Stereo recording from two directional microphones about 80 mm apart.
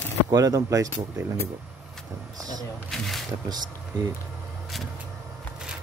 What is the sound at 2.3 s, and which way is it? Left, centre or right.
Vehicle, right.